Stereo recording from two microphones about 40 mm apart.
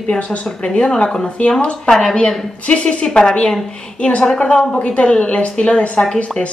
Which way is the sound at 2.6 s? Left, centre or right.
Left.